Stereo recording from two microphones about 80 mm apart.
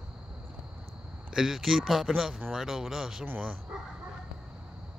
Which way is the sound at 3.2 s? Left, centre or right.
Centre.